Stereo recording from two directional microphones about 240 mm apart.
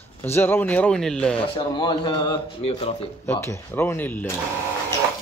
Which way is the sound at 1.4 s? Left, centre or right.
Centre.